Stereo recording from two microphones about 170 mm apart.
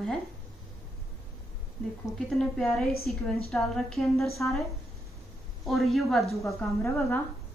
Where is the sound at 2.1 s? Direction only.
5° left (ahead or behind).